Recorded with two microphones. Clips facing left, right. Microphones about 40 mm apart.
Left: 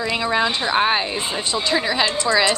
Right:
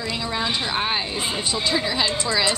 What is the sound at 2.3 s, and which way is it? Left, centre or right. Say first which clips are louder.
Speech: left 7 dB; centre.